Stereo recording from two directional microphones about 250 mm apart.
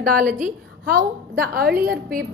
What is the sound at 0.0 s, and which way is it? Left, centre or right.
A woman's voice, right.